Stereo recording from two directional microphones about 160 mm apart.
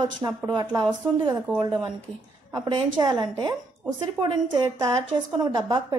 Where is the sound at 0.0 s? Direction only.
25° right (ahead or behind).